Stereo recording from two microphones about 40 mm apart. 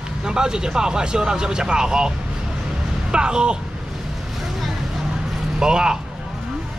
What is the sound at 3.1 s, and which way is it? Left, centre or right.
Speech, right.